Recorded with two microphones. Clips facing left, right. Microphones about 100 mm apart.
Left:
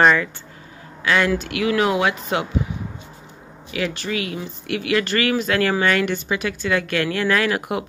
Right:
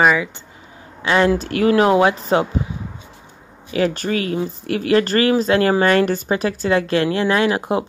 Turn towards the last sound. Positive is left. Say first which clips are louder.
# right 4 dB
turn(degrees=-30)  # may be behind; listen again after turning